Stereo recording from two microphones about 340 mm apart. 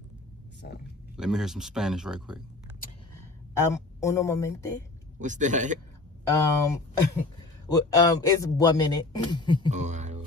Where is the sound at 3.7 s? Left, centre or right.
Centre.